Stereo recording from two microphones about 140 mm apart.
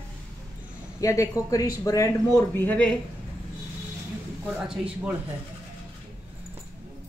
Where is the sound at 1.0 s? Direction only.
20° left (ahead or behind).